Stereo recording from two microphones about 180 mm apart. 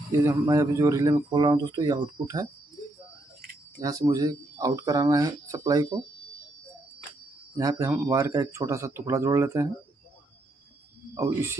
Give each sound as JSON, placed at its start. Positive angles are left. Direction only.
{"t": 0.2, "sound": "speech", "side_deg": -15}
{"t": 3.8, "sound": "speech", "side_deg": -20}
{"t": 7.5, "sound": "speech", "side_deg": -20}
{"t": 11.1, "sound": "speech", "side_deg": -15}